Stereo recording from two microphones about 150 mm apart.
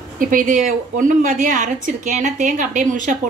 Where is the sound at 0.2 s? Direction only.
65° right (ahead or behind).